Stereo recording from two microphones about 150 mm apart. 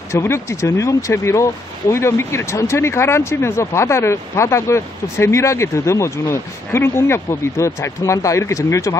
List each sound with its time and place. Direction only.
0.1 s speech: 20° left (ahead or behind)